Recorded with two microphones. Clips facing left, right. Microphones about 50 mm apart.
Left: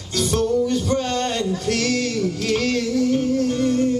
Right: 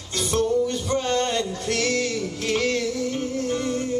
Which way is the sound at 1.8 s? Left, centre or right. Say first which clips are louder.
Left 2 dB; centre.